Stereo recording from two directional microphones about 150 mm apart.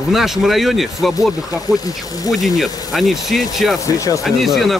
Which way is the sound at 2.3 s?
Centre (ahead or behind).